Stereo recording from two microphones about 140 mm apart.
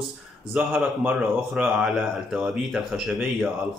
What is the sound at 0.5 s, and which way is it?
Speech, 5° right (ahead or behind).